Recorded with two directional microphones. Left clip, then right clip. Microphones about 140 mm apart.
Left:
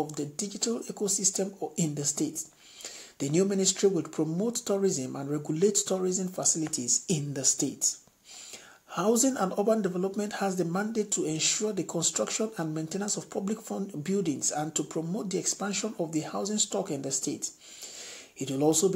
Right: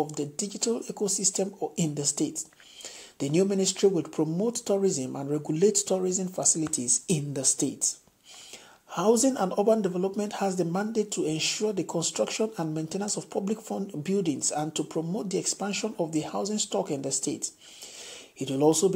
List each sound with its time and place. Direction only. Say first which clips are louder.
0.0 s speech: right 3 dB; 15° right (ahead or behind)